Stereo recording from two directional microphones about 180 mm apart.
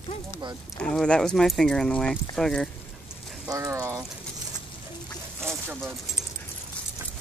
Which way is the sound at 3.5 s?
15° right (ahead or behind).